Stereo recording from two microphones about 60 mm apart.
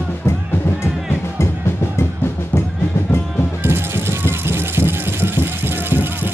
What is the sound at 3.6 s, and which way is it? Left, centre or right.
Vehicle, right.